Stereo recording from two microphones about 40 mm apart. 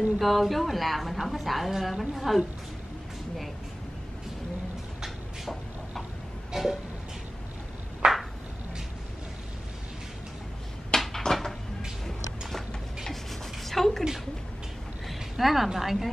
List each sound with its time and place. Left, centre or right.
0.2 s a woman's voice: centre
6.5 s music: centre
8.0 s a sound: right
11.0 s a sound: centre
12.4 s rub: centre
15.0 s a woman's voice: centre